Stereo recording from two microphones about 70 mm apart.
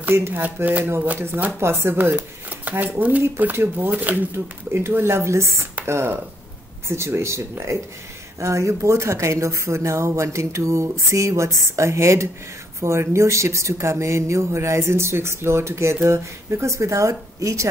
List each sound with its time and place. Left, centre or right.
0.3 s speech: right
4.7 s speech: right